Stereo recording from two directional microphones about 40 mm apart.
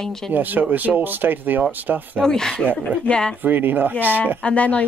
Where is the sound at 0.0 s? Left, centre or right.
Centre.